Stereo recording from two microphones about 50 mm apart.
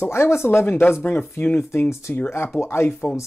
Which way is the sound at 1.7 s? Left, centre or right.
Left.